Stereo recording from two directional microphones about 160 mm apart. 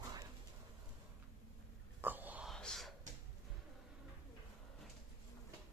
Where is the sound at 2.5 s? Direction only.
5° left (ahead or behind).